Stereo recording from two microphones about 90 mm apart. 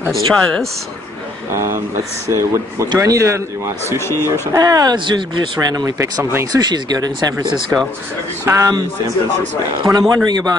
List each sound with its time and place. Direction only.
0.3 s speech: 5° left (ahead or behind)
1.5 s a man's voice: 30° right (ahead or behind)
4.0 s speech: 30° left (ahead or behind)
4.6 s speech: 45° right (ahead or behind)
4.9 s speech: 60° right (ahead or behind); by 7.4 s 45° right (ahead or behind)
7.7 s a man's voice: 30° right (ahead or behind)
9.9 s speech: 45° right (ahead or behind)